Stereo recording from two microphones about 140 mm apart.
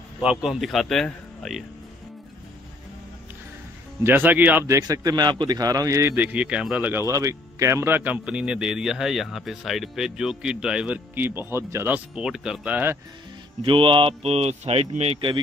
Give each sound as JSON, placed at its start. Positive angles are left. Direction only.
{"t": 0.2, "sound": "speech", "side_deg": -5}
{"t": 4.0, "sound": "a man's voice", "side_deg": -15}
{"t": 12.2, "sound": "speech", "side_deg": -5}
{"t": 13.6, "sound": "speech", "side_deg": -40}